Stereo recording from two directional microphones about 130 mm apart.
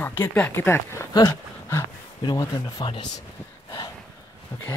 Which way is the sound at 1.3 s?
20° left (ahead or behind).